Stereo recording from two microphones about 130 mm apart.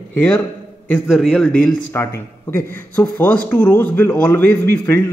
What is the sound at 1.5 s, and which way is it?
A man's voice, 15° left (ahead or behind).